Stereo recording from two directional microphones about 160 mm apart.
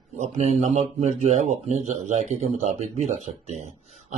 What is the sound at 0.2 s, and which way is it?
A man's voice, 45° right (ahead or behind).